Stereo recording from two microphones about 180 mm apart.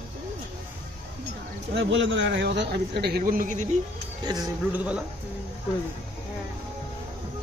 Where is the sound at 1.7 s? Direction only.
90° right; by 3.6 s 50° right (ahead or behind).